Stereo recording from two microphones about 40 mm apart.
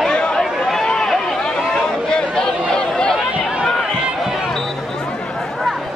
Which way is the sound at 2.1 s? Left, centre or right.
Centre.